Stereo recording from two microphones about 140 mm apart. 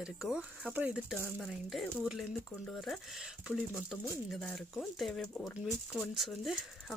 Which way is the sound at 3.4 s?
5° right (ahead or behind).